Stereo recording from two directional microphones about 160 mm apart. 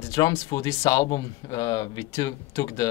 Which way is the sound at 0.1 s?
25° left (ahead or behind).